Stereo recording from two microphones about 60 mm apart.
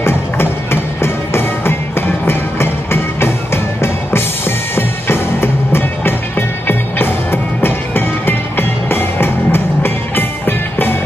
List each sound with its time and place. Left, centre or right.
0.0 s music: left